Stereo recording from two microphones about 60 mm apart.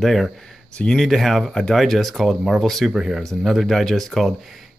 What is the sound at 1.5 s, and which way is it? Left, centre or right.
Speech, centre.